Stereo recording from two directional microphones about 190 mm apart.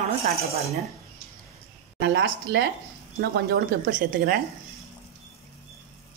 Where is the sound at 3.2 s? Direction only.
50° right (ahead or behind).